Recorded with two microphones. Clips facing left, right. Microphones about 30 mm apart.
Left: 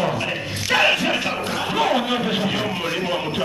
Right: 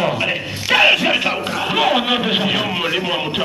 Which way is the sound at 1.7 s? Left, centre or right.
Right.